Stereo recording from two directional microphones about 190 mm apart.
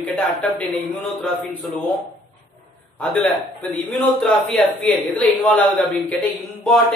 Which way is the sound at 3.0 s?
5° left (ahead or behind).